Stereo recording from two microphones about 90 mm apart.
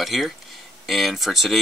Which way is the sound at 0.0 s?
Centre (ahead or behind).